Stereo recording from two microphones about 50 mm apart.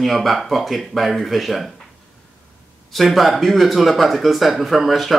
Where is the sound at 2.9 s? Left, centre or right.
Centre.